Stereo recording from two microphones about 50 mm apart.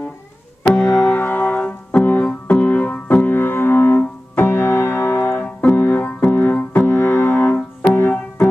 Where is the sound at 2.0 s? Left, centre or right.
Left.